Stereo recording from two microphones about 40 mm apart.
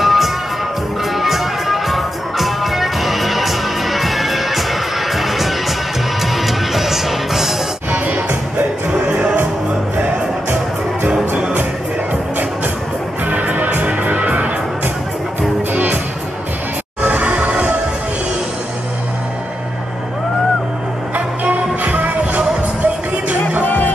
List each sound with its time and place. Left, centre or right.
0.0 s music: centre
9.0 s music: right
11.3 s music: right
13.2 s music: right
13.8 s music: right
15.7 s music: right
17.0 s music: right
21.1 s music: right
23.6 s music: left